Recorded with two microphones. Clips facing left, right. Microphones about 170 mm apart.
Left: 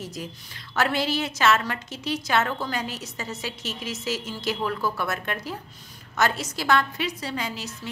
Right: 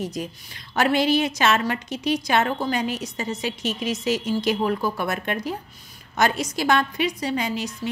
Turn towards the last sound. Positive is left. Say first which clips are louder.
# right 6 dB
turn(degrees=-15)  # may be behind; listen again after turning